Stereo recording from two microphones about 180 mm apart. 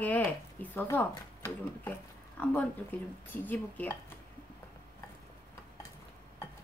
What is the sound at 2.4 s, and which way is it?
Speech, 10° left (ahead or behind).